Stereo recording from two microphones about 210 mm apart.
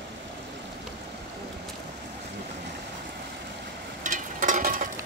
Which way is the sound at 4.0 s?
35° right (ahead or behind).